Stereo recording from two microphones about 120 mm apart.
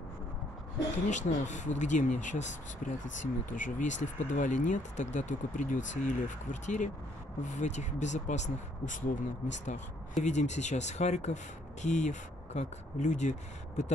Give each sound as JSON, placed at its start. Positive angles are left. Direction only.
{"t": 1.0, "sound": "speech", "side_deg": 90}
{"t": 11.8, "sound": "speech", "side_deg": 85}